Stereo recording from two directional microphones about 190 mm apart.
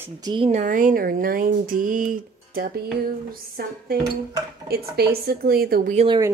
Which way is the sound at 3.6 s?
55° right (ahead or behind).